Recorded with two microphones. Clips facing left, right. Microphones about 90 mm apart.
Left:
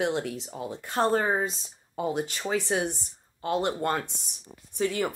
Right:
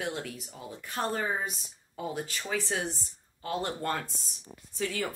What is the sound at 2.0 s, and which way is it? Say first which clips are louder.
Speech: left 6 dB; 20° left (ahead or behind).